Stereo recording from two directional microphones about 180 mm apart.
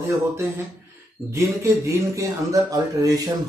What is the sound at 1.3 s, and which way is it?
Speech, 15° right (ahead or behind).